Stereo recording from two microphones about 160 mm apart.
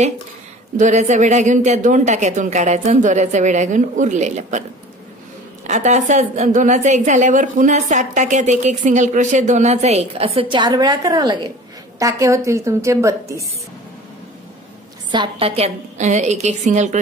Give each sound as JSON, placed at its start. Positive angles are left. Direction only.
{"t": 0.7, "sound": "a woman's voice", "side_deg": -50}
{"t": 5.7, "sound": "a woman's voice", "side_deg": -50}
{"t": 15.0, "sound": "a woman's voice", "side_deg": -30}